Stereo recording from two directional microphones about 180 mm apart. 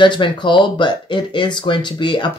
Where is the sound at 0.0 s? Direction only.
25° left (ahead or behind).